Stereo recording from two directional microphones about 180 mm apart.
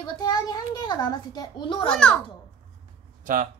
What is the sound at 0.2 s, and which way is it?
A child's voice, 20° left (ahead or behind).